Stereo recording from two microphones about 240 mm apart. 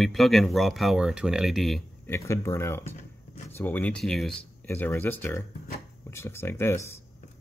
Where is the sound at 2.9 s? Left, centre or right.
Left.